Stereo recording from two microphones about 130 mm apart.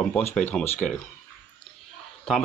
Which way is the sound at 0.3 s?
10° left (ahead or behind).